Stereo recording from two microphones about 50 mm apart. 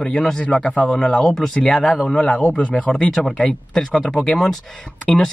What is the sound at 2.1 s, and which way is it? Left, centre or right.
Speech, left.